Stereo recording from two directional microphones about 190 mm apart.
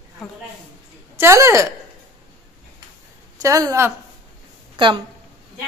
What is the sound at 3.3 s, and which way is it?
A woman's voice, 15° right (ahead or behind).